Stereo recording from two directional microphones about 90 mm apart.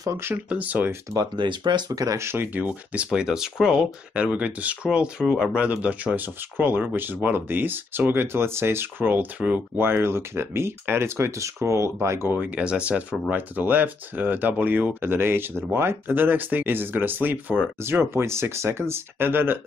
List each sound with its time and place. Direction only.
0.0 s speech: 35° right (ahead or behind)
0.3 s speech: 20° right (ahead or behind)
1.1 s speech: 55° right (ahead or behind)
1.9 s speech: 35° right (ahead or behind)
2.2 s speech: 25° right (ahead or behind)